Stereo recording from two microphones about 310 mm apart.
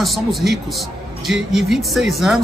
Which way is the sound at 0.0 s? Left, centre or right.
Centre.